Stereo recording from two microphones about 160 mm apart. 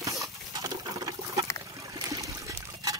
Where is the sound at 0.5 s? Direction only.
25° right (ahead or behind).